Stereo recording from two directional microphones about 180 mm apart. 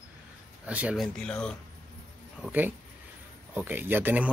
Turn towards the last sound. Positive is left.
turn(degrees=-10)  # may be behind; listen again after turning